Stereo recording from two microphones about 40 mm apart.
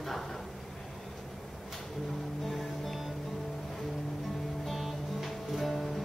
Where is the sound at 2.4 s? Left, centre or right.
Centre.